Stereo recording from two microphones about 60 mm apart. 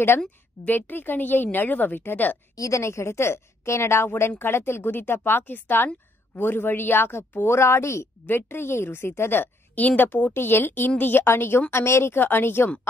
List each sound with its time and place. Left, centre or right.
0.7 s speech: left
2.5 s a woman's voice: left
8.3 s speech: left